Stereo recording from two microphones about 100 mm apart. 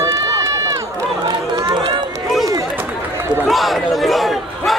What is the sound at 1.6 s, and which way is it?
Run, 45° right (ahead or behind).